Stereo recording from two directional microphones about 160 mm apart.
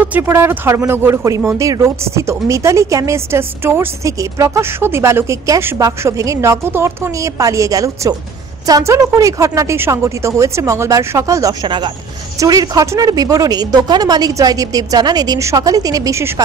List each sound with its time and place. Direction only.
0.0 s speech: 10° right (ahead or behind)